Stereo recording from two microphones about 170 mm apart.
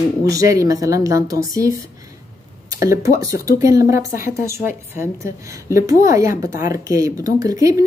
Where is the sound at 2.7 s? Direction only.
20° right (ahead or behind).